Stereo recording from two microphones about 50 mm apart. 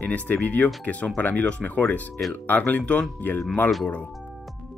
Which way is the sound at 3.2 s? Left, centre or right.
Left.